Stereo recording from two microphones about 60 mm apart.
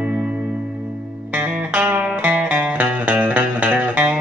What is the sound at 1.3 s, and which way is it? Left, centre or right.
Music, right.